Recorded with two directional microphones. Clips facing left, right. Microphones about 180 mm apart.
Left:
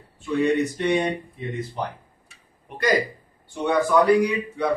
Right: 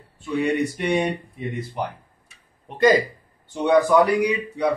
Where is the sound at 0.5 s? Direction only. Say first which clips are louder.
Even; 10° right (ahead or behind).